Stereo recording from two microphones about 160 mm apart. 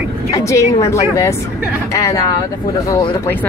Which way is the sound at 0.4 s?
20° left (ahead or behind).